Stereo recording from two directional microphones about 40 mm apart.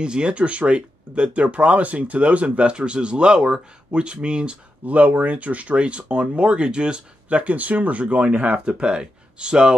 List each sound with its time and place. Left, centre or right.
0.0 s speech: right
4.9 s speech: right